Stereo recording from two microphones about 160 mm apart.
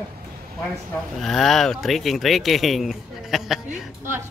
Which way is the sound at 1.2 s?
Centre (ahead or behind).